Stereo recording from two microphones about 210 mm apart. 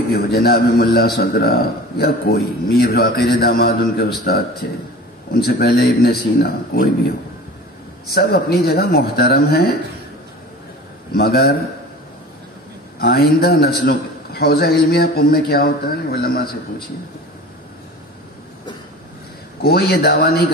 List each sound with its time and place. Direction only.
0.1 s a man's voice: 45° left (ahead or behind)
8.1 s a man's voice: 50° left (ahead or behind)
11.1 s a man's voice: 50° left (ahead or behind)
13.0 s a man's voice: 45° left (ahead or behind)
19.6 s a man's voice: 45° left (ahead or behind)